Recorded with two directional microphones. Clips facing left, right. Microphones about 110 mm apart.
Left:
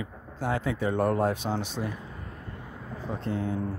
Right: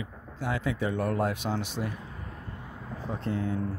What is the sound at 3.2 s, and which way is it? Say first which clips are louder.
Speech: even; 30° left (ahead or behind).